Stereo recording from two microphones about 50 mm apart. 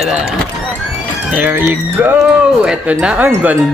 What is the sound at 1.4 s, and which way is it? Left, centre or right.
Speech, right.